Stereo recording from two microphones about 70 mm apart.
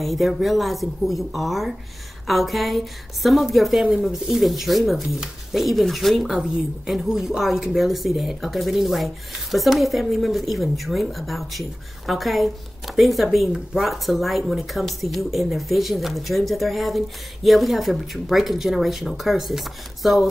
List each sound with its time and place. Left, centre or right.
0.0 s a woman's voice: centre